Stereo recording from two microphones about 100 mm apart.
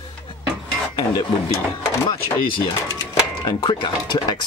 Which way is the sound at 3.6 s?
50° left (ahead or behind).